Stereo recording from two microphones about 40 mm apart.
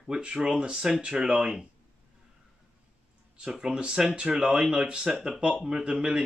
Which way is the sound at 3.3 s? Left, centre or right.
Centre.